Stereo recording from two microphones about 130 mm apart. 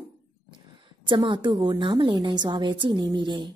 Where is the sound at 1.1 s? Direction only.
35° right (ahead or behind).